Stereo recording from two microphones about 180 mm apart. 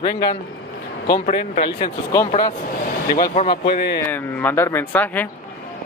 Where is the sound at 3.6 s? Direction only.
65° left (ahead or behind).